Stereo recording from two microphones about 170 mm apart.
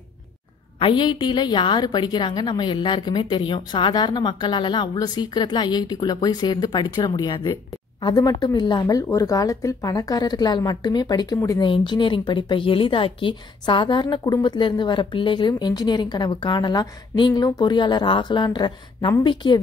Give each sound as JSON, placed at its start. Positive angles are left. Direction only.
{"t": 0.7, "sound": "speech", "side_deg": 30}